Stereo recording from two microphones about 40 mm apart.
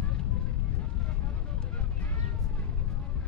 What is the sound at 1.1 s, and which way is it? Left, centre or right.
Vehicle, left.